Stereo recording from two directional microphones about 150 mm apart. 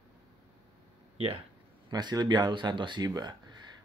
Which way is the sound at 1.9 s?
25° right (ahead or behind).